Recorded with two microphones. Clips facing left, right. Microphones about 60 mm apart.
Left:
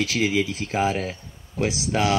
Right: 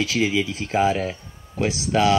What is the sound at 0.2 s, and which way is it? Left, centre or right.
Speech, right.